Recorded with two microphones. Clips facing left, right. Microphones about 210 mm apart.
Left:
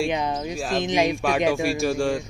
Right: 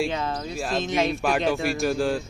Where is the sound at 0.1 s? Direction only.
15° left (ahead or behind).